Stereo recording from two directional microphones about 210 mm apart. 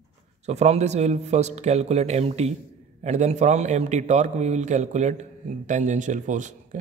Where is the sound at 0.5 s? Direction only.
30° right (ahead or behind).